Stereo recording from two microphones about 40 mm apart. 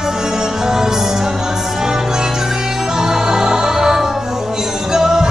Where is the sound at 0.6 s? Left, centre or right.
Centre.